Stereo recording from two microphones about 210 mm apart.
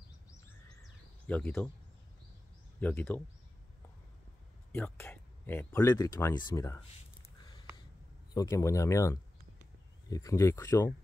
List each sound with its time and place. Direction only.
1.2 s speech: 10° left (ahead or behind)
2.8 s speech: 10° left (ahead or behind)
4.7 s speech: 10° left (ahead or behind)
8.3 s speech: 15° left (ahead or behind)